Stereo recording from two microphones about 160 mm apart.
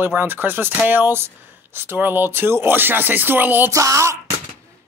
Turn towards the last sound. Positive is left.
turn(degrees=-20)  # may be behind; listen again after turning